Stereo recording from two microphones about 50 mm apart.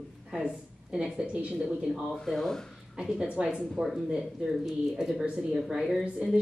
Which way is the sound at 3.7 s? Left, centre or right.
Centre.